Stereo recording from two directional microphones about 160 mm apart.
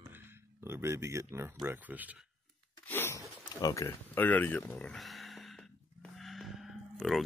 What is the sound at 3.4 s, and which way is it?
Speech, 20° left (ahead or behind).